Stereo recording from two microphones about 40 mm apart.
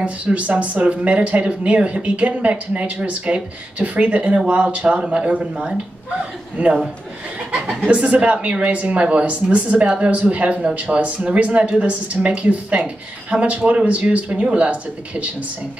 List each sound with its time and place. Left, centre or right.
0.0 s speech: right
7.8 s speech: right